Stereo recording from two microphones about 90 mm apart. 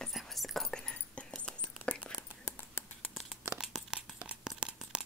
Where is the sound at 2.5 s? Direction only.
20° left (ahead or behind).